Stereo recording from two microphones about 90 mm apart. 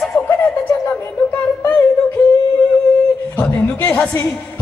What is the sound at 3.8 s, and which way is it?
Speech, 25° left (ahead or behind).